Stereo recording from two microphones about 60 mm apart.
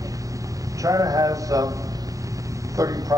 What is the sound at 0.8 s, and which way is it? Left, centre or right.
Speech, right.